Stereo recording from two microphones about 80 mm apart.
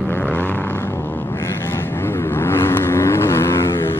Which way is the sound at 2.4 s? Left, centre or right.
Left.